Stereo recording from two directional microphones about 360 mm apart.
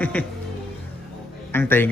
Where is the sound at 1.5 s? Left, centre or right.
Centre.